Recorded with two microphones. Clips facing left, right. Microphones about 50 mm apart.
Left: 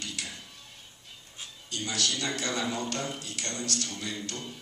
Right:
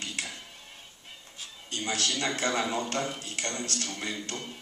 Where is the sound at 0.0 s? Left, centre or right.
Right.